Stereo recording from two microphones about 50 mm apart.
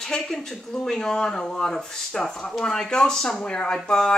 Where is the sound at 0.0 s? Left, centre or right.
Centre.